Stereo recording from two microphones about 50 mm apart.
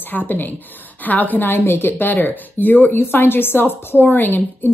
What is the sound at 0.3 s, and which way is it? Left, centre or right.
A woman's voice, left.